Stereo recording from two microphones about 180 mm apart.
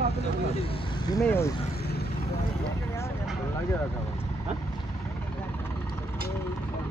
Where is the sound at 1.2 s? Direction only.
10° left (ahead or behind).